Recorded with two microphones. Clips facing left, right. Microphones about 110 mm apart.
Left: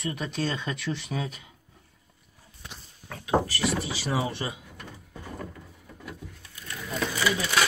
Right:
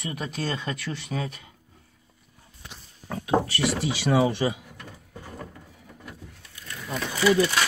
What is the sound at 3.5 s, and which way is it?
Speech, 75° right (ahead or behind).